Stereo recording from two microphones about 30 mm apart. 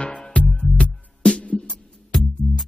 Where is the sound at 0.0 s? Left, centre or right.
Left.